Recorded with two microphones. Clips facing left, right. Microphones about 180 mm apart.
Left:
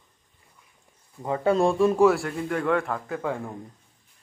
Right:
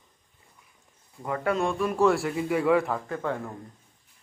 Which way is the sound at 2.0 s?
Centre (ahead or behind).